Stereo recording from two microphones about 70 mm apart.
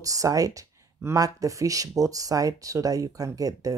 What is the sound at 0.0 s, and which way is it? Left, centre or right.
Speech, right.